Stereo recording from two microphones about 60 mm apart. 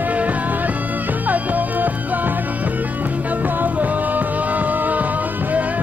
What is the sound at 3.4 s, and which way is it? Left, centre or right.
Music, right.